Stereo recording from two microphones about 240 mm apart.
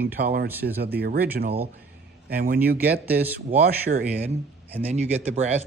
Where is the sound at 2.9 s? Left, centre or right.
Centre.